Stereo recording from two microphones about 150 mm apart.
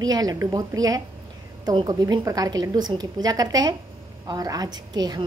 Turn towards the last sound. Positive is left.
turn(degrees=-25)  # may be behind; listen again after turning